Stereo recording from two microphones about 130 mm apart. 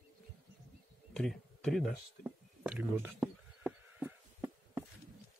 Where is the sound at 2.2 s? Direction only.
10° right (ahead or behind).